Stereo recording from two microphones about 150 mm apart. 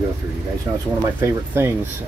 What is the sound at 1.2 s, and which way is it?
Speech, 15° right (ahead or behind).